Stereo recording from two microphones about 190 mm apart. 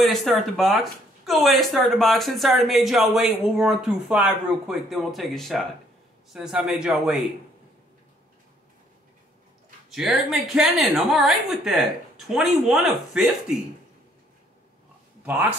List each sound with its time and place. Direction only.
0.0 s speech: centre (ahead or behind)
9.8 s speech: centre (ahead or behind)